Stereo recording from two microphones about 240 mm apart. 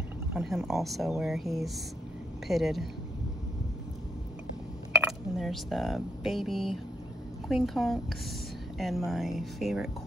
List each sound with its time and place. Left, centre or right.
0.3 s speech: centre
5.0 s speech: centre